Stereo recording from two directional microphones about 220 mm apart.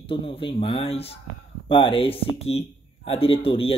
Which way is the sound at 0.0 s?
25° left (ahead or behind).